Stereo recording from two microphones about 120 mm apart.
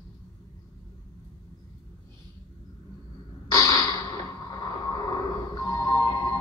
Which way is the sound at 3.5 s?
30° left (ahead or behind).